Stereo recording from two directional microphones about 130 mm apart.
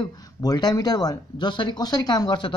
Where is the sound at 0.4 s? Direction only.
30° left (ahead or behind).